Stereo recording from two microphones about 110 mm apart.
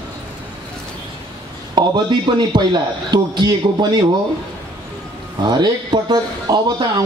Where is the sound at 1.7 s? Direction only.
40° right (ahead or behind).